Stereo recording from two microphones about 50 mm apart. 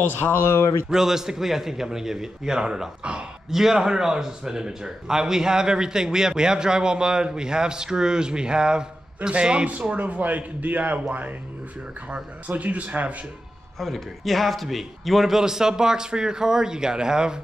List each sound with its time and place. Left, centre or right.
0.1 s speech: left
0.8 s speech: centre
3.4 s speech: centre
9.8 s speech: right
12.4 s speech: right
13.7 s speech: centre